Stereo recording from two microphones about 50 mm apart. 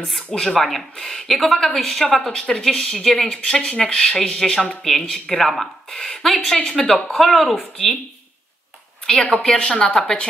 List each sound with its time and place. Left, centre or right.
0.3 s speech: centre
9.0 s speech: centre